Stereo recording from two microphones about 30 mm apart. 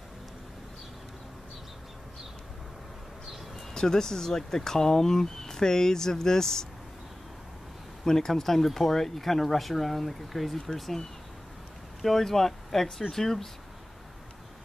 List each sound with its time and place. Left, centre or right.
3.7 s speech: centre
8.0 s speech: centre
10.7 s speech: centre